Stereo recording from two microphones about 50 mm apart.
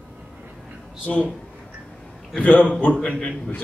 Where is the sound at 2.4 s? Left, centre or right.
Left.